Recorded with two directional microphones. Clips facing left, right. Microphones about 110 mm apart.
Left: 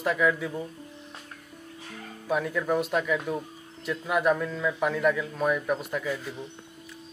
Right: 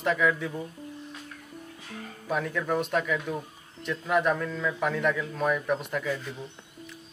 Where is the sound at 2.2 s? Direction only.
5° left (ahead or behind).